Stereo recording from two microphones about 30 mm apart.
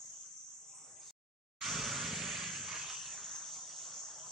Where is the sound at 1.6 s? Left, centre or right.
Centre.